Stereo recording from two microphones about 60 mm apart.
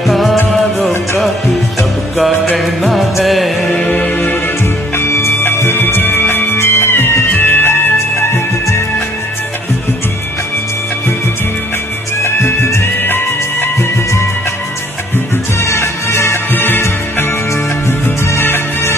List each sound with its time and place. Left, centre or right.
0.0 s music: centre
2.5 s music: centre
3.7 s music: left
4.9 s music: left
12.2 s music: left
15.6 s music: left